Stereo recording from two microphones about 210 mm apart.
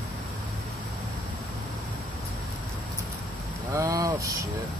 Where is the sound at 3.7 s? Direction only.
15° right (ahead or behind).